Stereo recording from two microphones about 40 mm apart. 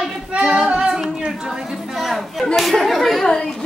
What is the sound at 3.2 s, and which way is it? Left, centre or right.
Speech, centre.